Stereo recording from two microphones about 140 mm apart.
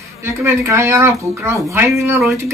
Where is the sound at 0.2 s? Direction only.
20° right (ahead or behind).